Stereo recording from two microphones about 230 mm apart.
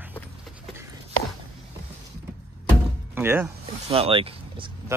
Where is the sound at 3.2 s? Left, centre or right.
Centre.